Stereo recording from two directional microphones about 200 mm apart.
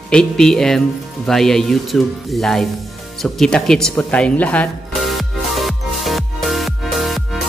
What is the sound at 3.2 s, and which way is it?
Music, centre (ahead or behind).